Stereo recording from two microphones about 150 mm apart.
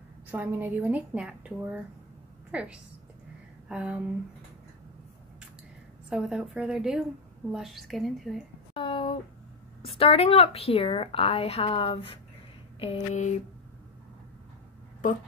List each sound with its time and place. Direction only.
0.3 s a woman's voice: 15° right (ahead or behind)
3.6 s a sound: 5° right (ahead or behind)
6.0 s a woman's voice: 5° right (ahead or behind)
8.7 s a woman's voice: 35° left (ahead or behind)